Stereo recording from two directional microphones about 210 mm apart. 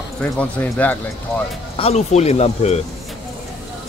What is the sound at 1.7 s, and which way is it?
Speech, 30° left (ahead or behind).